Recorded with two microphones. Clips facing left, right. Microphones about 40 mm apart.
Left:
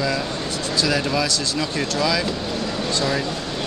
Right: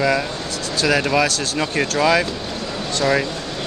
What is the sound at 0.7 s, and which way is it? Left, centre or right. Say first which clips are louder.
Speech: right 4 dB; right.